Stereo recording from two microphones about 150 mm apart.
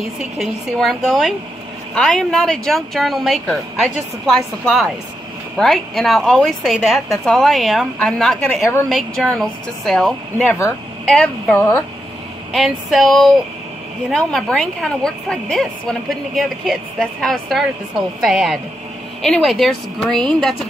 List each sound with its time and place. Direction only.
0.2 s a woman's voice: centre (ahead or behind)
12.5 s a woman's voice: centre (ahead or behind)